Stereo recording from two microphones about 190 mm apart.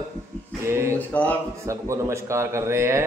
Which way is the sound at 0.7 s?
15° right (ahead or behind).